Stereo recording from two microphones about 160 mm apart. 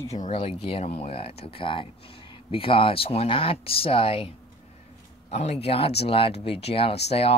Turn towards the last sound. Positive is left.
turn(degrees=40)  # may be behind; listen again after turning